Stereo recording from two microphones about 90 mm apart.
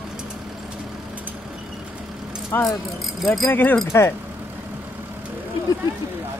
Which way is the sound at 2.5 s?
25° left (ahead or behind).